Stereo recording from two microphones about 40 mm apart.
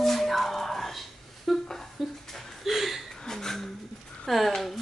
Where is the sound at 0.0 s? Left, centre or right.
Centre.